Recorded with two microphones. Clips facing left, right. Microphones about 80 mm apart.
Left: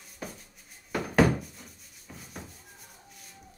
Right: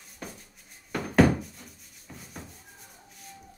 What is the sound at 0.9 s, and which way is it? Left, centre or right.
Rub, centre.